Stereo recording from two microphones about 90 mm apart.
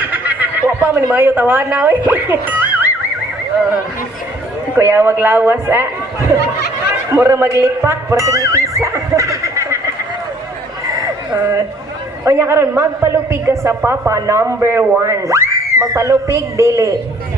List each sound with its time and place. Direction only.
0.0 s neigh: 20° right (ahead or behind)
1.1 s speech: 20° right (ahead or behind)
4.7 s speech: 25° right (ahead or behind)
12.3 s a man's voice: 25° right (ahead or behind)